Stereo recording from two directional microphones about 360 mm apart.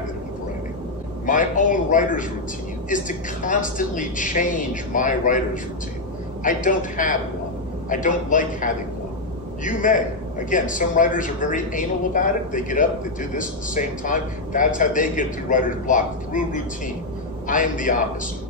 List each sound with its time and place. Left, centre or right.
1.2 s speech: left